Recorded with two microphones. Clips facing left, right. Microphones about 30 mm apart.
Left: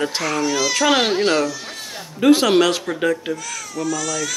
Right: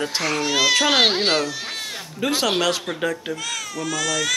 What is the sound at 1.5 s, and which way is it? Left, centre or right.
Bleat, right.